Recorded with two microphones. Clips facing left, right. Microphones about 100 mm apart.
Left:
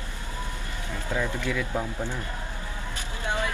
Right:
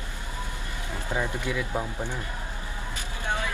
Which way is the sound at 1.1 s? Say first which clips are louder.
Left 1 dB; 20° right (ahead or behind).